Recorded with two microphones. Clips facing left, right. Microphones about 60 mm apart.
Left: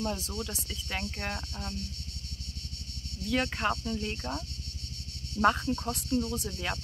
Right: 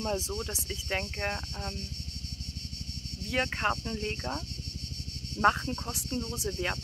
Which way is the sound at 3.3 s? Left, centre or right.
Centre.